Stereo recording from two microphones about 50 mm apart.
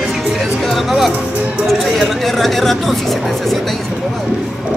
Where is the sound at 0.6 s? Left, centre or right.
Centre.